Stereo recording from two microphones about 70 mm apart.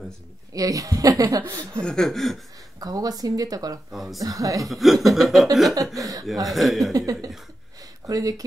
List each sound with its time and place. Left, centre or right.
0.5 s speech: right
1.8 s chuckle: centre
2.8 s speech: right
3.9 s chuckle: centre
4.2 s speech: right
4.6 s chuckle: centre
5.9 s speech: right
6.4 s chuckle: centre
6.9 s speech: right